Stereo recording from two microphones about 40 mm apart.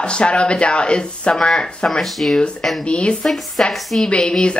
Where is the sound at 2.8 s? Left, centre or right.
Left.